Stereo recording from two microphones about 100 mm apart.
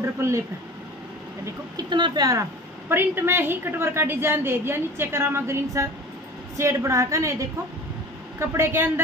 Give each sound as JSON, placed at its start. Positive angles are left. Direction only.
{"t": 0.0, "sound": "a woman's voice", "side_deg": -30}
{"t": 1.8, "sound": "speech", "side_deg": -50}
{"t": 2.9, "sound": "a woman's voice", "side_deg": -25}